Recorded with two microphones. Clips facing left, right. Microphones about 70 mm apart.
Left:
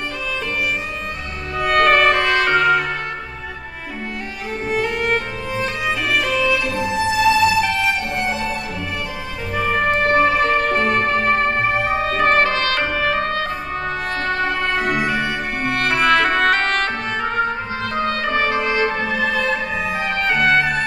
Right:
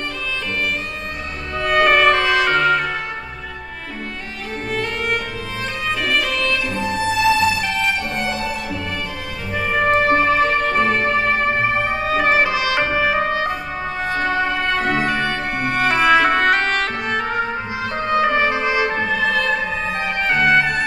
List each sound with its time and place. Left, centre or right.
1.7 s music: centre
4.6 s music: centre
6.8 s music: centre
7.1 s music: centre
9.6 s music: centre
14.8 s music: centre
15.6 s music: centre
18.0 s trumpet: centre
19.1 s music: centre